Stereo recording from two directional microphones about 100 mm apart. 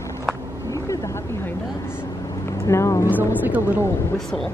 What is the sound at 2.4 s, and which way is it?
Vehicle, 30° left (ahead or behind).